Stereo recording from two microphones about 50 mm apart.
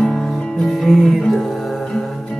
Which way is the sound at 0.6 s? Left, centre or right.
Centre.